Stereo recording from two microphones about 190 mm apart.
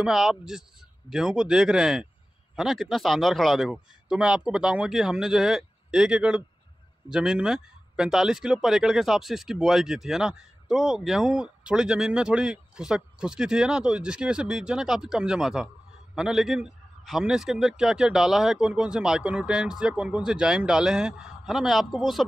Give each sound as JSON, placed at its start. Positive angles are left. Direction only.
{"t": 0.0, "sound": "speech", "side_deg": 0}